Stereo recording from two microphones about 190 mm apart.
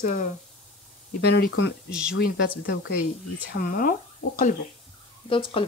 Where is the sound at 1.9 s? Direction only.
5° right (ahead or behind).